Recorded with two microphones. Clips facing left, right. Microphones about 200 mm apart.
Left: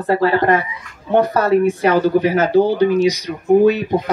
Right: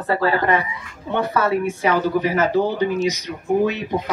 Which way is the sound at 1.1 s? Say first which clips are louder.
Left 6 dB; 35° left (ahead or behind).